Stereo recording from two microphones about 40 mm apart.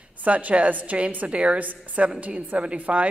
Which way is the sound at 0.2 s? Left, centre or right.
Right.